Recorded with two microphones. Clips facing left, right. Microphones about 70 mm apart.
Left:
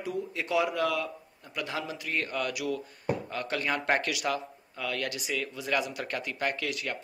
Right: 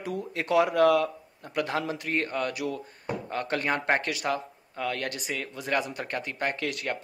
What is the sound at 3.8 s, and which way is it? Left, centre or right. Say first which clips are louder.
Speech: right 1 dB; right.